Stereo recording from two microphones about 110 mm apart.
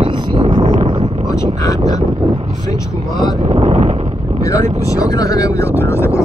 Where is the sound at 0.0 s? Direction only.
50° right (ahead or behind).